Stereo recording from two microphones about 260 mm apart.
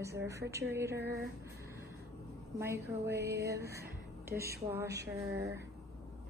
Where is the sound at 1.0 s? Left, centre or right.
Right.